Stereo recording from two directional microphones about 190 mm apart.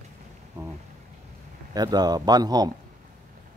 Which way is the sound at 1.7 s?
20° right (ahead or behind).